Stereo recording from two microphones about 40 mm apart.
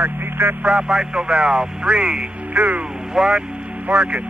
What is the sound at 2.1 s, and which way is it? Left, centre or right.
Speech, right.